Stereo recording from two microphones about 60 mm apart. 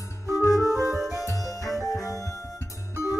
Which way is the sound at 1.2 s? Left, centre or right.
Left.